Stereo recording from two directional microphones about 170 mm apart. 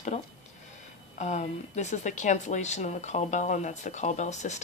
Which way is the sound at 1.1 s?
45° left (ahead or behind).